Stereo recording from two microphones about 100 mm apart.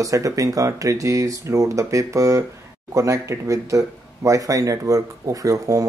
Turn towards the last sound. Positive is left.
turn(degrees=-35)  # may be behind; listen again after turning